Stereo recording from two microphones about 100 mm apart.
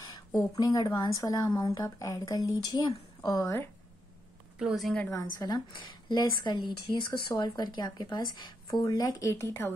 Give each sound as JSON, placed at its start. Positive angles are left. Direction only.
{"t": 0.6, "sound": "a woman's voice", "side_deg": 40}
{"t": 4.6, "sound": "a woman's voice", "side_deg": -5}
{"t": 5.1, "sound": "a woman's voice", "side_deg": 40}
{"t": 8.8, "sound": "a woman's voice", "side_deg": 35}